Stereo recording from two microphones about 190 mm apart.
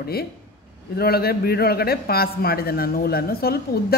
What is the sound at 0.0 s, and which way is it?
A man's voice, 55° left (ahead or behind).